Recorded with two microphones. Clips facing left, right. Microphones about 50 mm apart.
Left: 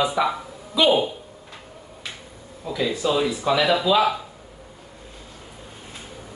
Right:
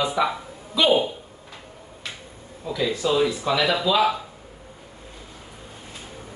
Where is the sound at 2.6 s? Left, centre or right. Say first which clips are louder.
Left 1 dB; centre.